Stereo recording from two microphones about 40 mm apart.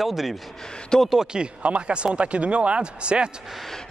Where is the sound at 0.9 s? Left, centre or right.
Centre.